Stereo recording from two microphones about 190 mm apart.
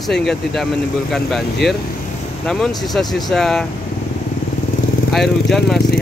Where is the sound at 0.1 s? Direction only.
Centre (ahead or behind).